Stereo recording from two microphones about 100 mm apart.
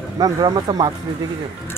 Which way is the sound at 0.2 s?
40° right (ahead or behind).